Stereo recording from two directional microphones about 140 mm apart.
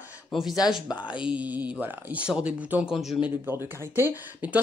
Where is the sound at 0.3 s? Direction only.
Centre (ahead or behind).